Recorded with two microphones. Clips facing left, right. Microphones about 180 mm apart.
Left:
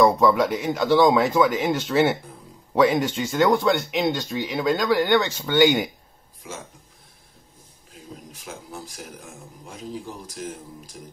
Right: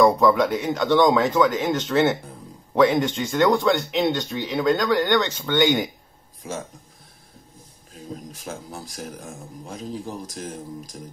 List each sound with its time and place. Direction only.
0.0 s speech: 5° left (ahead or behind)
6.4 s speech: 35° right (ahead or behind)
8.3 s speech: 40° right (ahead or behind)